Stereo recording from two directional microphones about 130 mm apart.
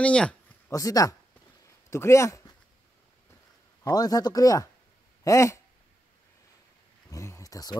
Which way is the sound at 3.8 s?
25° left (ahead or behind).